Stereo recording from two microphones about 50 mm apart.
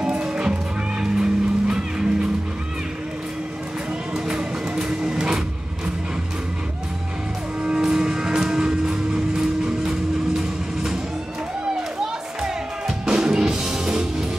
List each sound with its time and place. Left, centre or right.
0.0 s music: centre
4.1 s music: centre
7.6 s music: centre
12.0 s music: centre